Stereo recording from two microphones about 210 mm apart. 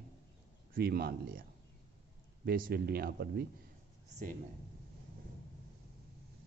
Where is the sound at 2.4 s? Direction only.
45° right (ahead or behind).